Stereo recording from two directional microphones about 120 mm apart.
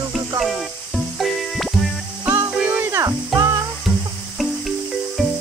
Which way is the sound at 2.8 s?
25° right (ahead or behind).